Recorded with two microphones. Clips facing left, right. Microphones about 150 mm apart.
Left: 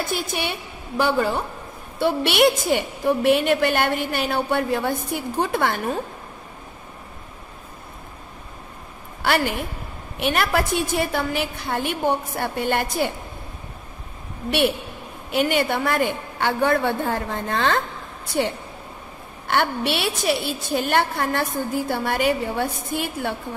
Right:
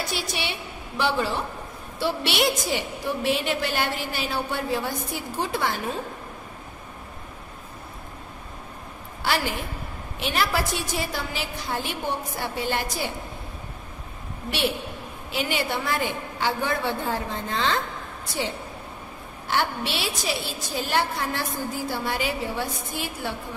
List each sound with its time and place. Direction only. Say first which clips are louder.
0.0 s a woman's voice: left 4 dB; 50° left (ahead or behind)
9.2 s a woman's voice: left 4 dB; 55° left (ahead or behind)
15.3 s a woman's voice: left 6 dB; 50° left (ahead or behind)
19.4 s a woman's voice: left 4 dB; 60° left (ahead or behind)